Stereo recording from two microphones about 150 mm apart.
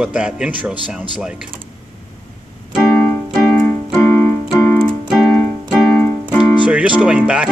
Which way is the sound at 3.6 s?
15° left (ahead or behind).